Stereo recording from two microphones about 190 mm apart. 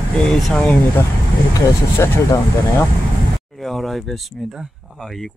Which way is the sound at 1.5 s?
15° left (ahead or behind).